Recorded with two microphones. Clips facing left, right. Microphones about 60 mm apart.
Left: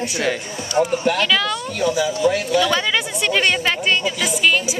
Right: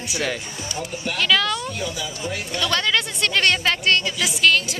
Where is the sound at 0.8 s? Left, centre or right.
Left.